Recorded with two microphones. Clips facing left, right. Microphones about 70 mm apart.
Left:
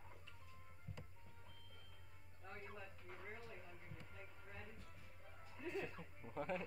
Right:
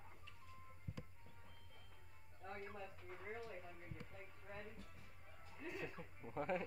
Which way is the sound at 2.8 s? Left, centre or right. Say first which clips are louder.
Right 2 dB; centre.